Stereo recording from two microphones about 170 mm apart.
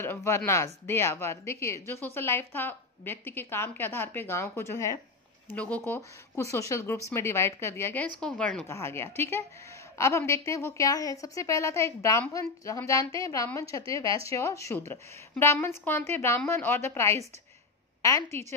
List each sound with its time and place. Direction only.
0.0 s a woman's voice: 15° left (ahead or behind)
8.6 s a woman's voice: 15° left (ahead or behind)